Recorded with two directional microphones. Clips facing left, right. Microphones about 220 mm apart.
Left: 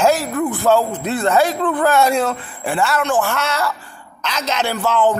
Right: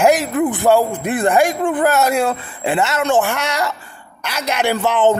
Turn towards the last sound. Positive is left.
turn(degrees=-20)  # may be behind; listen again after turning